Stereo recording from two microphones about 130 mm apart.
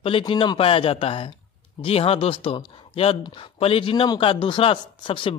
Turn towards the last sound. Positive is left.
turn(degrees=40)  # may be behind; listen again after turning